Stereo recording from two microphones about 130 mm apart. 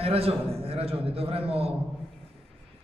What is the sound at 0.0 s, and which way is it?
A man's voice, 50° right (ahead or behind).